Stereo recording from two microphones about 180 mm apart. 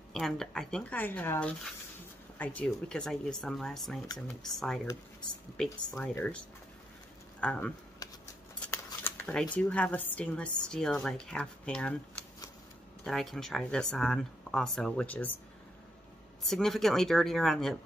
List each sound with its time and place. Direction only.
0.1 s a woman's voice: centre (ahead or behind)
5.6 s a woman's voice: 5° left (ahead or behind)
8.0 s a sound: 20° left (ahead or behind)
8.5 s shuffling cards: 10° left (ahead or behind)
9.6 s a woman's voice: 5° left (ahead or behind)
13.0 s a woman's voice: centre (ahead or behind)
16.4 s a woman's voice: centre (ahead or behind)